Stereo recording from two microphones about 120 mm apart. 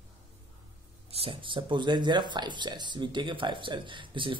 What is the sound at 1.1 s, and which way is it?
Speech, 50° right (ahead or behind).